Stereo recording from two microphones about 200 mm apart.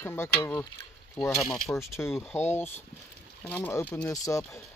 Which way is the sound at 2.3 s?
10° left (ahead or behind).